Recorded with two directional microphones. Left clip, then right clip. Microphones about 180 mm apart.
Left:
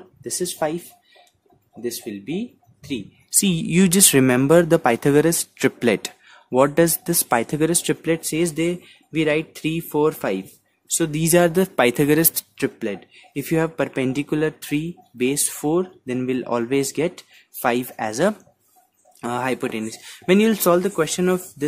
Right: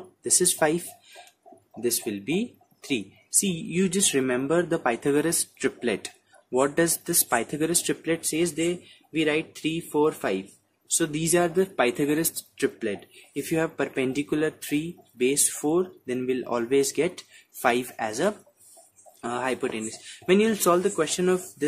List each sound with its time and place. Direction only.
0.2 s speech: 5° left (ahead or behind)
3.3 s speech: 45° left (ahead or behind)
12.5 s speech: 35° left (ahead or behind)